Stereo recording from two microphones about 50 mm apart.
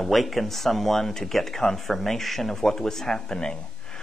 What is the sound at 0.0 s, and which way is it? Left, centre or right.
A man's voice, centre.